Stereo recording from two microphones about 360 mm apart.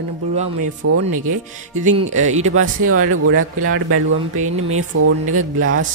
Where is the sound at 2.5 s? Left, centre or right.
Right.